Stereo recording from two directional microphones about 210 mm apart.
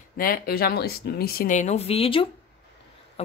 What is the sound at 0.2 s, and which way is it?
Speech, 45° left (ahead or behind).